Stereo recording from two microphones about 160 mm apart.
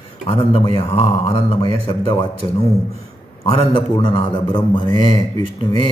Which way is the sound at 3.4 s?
35° left (ahead or behind).